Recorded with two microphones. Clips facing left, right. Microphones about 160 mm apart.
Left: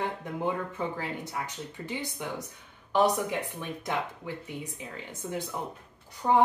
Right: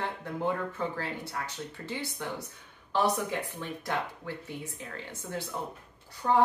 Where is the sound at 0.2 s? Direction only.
15° left (ahead or behind).